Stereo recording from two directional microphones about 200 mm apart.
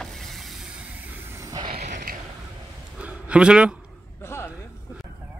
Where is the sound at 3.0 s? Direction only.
5° right (ahead or behind).